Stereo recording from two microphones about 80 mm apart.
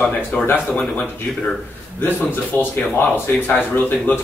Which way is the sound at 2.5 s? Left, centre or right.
Left.